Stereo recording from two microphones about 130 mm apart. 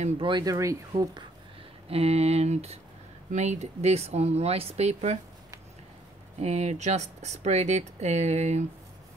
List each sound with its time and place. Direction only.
0.2 s speech: 35° right (ahead or behind)
1.9 s a sound: 50° right (ahead or behind)
3.3 s speech: 65° right (ahead or behind)
6.4 s speech: 60° right (ahead or behind)